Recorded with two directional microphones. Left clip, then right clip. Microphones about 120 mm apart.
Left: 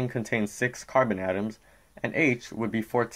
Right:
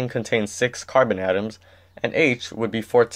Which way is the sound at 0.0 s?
25° right (ahead or behind).